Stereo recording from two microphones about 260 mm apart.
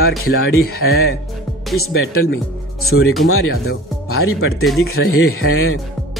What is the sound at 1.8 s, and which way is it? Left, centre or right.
Speech, left.